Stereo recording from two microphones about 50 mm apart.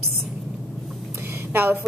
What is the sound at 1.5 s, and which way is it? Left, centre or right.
Speech, right.